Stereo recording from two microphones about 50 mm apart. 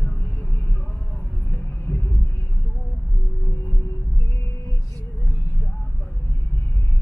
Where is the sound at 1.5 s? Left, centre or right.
Left.